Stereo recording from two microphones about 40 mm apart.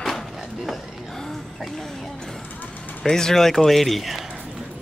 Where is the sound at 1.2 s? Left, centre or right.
Centre.